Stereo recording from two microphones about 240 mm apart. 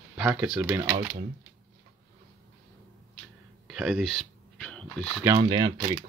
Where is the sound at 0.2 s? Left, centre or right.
Centre.